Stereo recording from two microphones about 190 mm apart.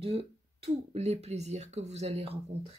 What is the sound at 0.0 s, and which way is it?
Speech, 30° right (ahead or behind).